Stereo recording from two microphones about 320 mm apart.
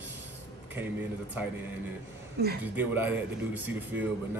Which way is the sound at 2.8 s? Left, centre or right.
Centre.